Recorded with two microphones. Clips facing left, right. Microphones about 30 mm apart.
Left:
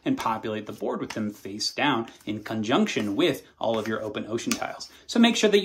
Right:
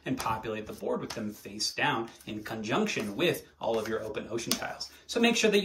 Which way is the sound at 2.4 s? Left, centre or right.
Left.